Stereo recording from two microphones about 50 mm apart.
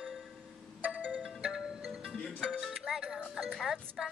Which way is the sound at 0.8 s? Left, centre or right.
Right.